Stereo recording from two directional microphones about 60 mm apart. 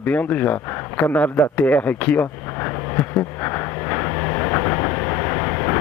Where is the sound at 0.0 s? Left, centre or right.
Left.